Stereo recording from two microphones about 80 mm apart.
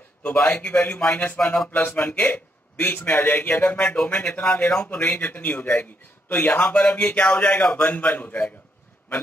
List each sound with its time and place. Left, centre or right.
0.2 s a man's voice: centre
1.7 s a man's voice: left